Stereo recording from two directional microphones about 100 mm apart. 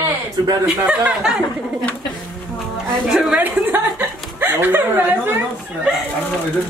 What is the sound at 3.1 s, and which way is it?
A woman's voice, 10° right (ahead or behind).